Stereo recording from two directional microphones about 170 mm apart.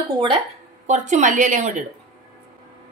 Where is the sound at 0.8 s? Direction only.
45° right (ahead or behind).